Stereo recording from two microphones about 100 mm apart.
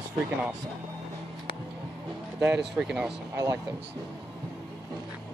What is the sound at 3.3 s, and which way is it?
Speech, 35° right (ahead or behind).